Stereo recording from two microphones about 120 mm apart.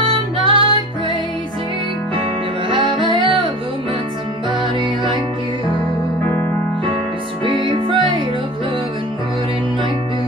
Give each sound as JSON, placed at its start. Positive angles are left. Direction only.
{"t": 0.1, "sound": "music", "side_deg": -45}
{"t": 2.7, "sound": "music", "side_deg": -45}
{"t": 7.4, "sound": "music", "side_deg": -45}